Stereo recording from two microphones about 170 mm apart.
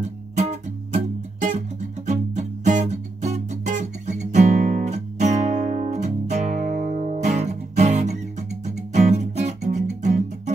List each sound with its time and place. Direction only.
0.4 s music: 40° right (ahead or behind)